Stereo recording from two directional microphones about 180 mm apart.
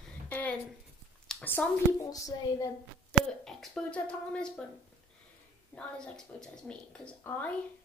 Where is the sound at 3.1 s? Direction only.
5° left (ahead or behind).